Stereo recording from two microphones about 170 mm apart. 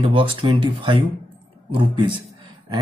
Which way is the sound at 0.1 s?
30° right (ahead or behind).